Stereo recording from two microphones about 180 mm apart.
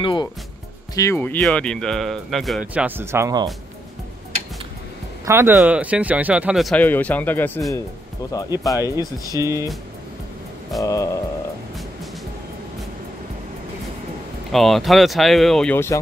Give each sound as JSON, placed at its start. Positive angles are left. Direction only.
{"t": 0.0, "sound": "speech", "side_deg": 25}
{"t": 0.9, "sound": "speech", "side_deg": 15}
{"t": 5.2, "sound": "speech", "side_deg": -15}
{"t": 9.4, "sound": "speech", "side_deg": -15}
{"t": 10.8, "sound": "music", "side_deg": 20}
{"t": 14.5, "sound": "speech", "side_deg": 0}